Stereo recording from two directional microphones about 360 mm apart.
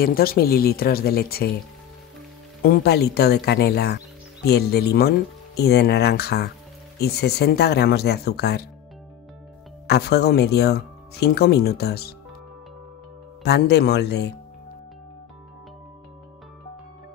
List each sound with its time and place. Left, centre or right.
0.0 s speech: left
2.6 s speech: left
9.8 s speech: left
13.4 s speech: left